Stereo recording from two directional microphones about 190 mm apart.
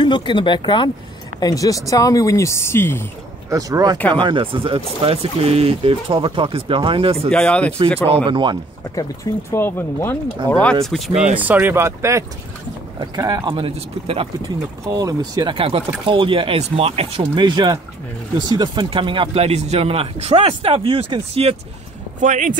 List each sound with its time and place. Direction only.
0.0 s speech: 25° left (ahead or behind)
3.4 s speech: 20° right (ahead or behind)
7.2 s speech: 5° left (ahead or behind)
8.1 s speech: 25° right (ahead or behind)
8.9 s speech: 15° left (ahead or behind)
11.3 s speech: 10° right (ahead or behind); by 14.2 s 30° right (ahead or behind)
14.9 s speech: 20° right (ahead or behind)
22.2 s speech: 40° right (ahead or behind)